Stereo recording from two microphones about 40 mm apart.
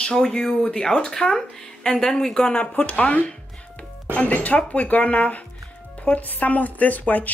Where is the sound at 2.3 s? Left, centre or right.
Left.